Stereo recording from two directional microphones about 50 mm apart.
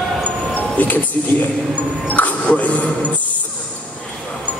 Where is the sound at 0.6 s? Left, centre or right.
Left.